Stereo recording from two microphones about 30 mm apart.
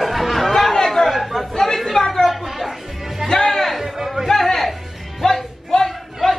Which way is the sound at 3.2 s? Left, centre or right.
Centre.